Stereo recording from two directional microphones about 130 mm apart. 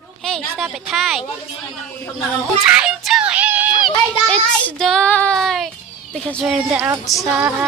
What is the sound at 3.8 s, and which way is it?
A woman's voice, 5° left (ahead or behind).